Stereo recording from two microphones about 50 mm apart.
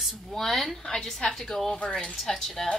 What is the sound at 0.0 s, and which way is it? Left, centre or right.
A woman's voice, centre.